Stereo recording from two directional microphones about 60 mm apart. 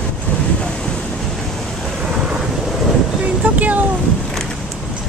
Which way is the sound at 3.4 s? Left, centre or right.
Right.